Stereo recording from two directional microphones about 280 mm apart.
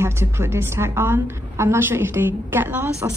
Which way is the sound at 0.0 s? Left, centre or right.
Centre.